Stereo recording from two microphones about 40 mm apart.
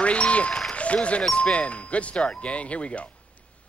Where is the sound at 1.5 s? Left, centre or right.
Left.